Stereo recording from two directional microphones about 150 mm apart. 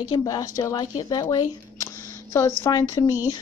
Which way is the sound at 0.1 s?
25° left (ahead or behind).